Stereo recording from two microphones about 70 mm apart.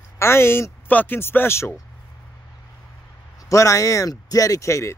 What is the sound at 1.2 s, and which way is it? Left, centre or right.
Speech, left.